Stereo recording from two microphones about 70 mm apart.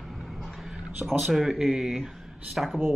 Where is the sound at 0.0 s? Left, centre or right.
Centre.